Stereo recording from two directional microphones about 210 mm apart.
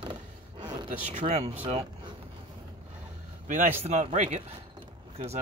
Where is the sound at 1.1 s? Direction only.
25° right (ahead or behind).